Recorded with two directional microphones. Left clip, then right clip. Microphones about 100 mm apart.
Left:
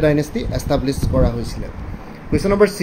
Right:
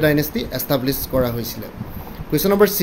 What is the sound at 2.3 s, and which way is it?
Speech, 20° right (ahead or behind).